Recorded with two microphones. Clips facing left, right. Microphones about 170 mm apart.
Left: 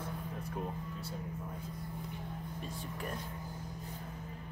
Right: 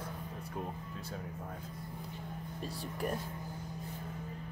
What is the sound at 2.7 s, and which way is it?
Speech, 35° right (ahead or behind).